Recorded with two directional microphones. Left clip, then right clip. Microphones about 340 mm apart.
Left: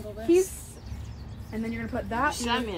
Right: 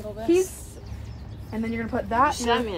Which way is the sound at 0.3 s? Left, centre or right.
Right.